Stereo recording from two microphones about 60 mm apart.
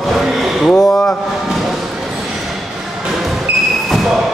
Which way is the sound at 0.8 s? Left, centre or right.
Centre.